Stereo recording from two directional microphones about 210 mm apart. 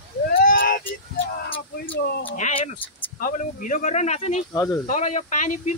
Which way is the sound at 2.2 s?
30° left (ahead or behind).